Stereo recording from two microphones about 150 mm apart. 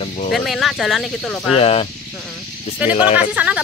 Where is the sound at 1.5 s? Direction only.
40° left (ahead or behind).